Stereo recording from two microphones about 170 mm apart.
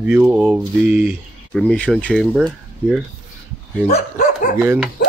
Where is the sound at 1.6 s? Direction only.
5° left (ahead or behind).